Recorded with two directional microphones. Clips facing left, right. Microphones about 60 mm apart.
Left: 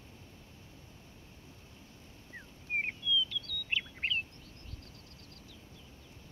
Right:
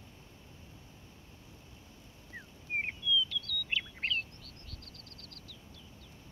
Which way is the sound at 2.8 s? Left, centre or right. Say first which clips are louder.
Right 2 dB; centre.